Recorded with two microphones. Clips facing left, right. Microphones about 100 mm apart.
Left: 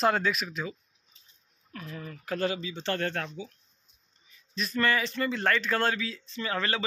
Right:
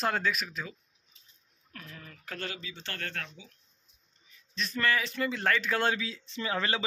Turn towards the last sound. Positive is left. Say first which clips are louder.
# left 1 dB
turn(degrees=-20)  # may be behind; listen again after turning